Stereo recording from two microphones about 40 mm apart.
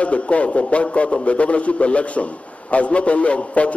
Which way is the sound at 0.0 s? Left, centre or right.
Left.